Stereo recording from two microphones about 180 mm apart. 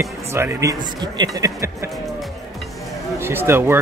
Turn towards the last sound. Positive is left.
turn(degrees=-15)  # may be behind; listen again after turning